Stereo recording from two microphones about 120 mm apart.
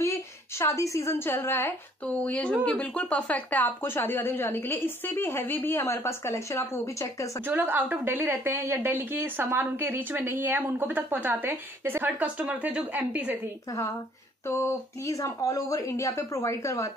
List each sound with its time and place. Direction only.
0.0 s a woman's voice: 25° left (ahead or behind)
7.4 s a woman's voice: 15° right (ahead or behind)
14.5 s speech: 25° left (ahead or behind)